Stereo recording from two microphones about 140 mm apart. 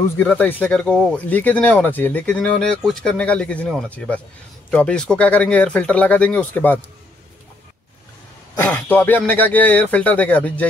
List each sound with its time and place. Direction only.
0.2 s speech: 10° left (ahead or behind)
8.5 s speech: 15° left (ahead or behind)